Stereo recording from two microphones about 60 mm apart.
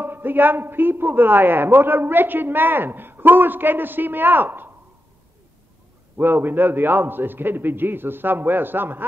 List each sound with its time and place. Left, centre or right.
0.0 s a man's voice: right
6.1 s a man's voice: right